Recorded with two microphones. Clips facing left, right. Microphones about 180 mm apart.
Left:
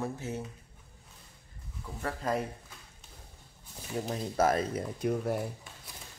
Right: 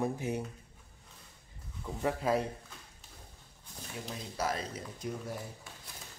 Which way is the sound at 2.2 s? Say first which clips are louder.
Right 1 dB; 5° right (ahead or behind).